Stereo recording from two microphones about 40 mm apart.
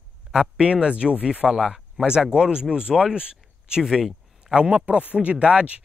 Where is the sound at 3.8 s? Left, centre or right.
Centre.